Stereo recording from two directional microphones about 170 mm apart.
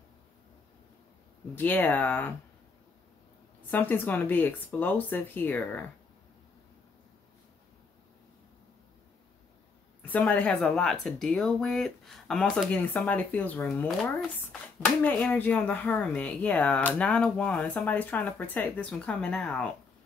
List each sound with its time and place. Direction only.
1.5 s speech: 10° left (ahead or behind)
3.7 s speech: 10° left (ahead or behind)
10.0 s speech: 10° left (ahead or behind)
15.0 s speech: 10° left (ahead or behind)